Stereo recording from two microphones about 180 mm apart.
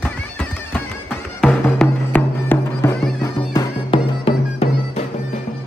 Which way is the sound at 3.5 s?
30° left (ahead or behind).